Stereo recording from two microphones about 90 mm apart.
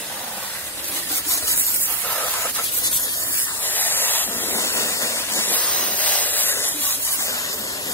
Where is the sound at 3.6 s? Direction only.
20° left (ahead or behind).